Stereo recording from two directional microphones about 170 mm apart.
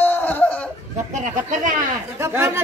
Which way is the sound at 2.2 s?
15° right (ahead or behind).